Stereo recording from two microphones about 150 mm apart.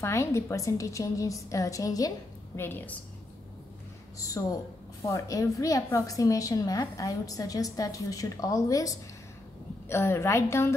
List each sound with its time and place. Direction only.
0.0 s a woman's voice: 20° left (ahead or behind)
4.4 s a woman's voice: 25° left (ahead or behind)